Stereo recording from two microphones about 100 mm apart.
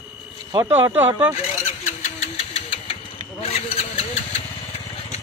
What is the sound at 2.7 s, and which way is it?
Vehicle, 70° left (ahead or behind).